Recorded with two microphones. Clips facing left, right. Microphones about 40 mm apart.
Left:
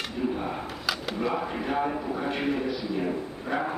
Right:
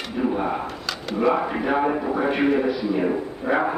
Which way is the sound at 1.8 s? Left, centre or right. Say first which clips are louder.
Right 7 dB; right.